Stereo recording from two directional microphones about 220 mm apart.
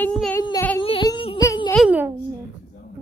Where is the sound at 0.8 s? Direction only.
20° left (ahead or behind).